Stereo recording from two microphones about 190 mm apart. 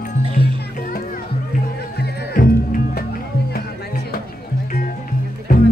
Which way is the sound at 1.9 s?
50° left (ahead or behind).